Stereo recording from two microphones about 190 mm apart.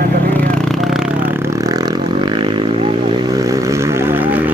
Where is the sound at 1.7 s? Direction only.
20° right (ahead or behind).